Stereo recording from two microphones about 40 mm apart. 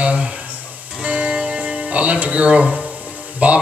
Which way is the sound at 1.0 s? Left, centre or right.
Right.